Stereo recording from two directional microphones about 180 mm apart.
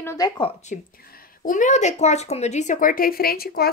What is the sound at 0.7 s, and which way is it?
Speech, 45° left (ahead or behind).